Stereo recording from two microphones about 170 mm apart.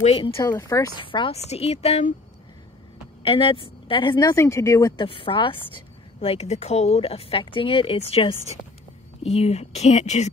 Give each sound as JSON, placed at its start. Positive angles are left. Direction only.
{"t": 0.0, "sound": "speech", "side_deg": 35}
{"t": 1.0, "sound": "speech", "side_deg": 30}
{"t": 3.2, "sound": "a woman's voice", "side_deg": 30}
{"t": 4.9, "sound": "speech", "side_deg": 30}